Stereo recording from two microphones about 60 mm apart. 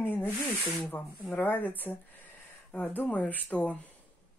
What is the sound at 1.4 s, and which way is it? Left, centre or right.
Speech, left.